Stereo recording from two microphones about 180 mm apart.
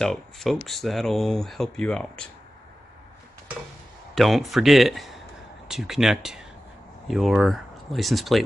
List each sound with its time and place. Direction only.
0.0 s speech: centre (ahead or behind)
4.1 s a man's voice: centre (ahead or behind)